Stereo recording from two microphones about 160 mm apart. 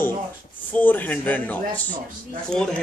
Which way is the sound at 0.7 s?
10° left (ahead or behind).